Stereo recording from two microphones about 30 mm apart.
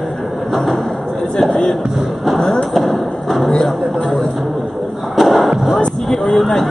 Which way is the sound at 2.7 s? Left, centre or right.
Centre.